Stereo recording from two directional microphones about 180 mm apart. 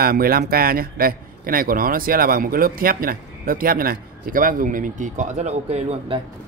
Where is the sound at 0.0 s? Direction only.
55° right (ahead or behind).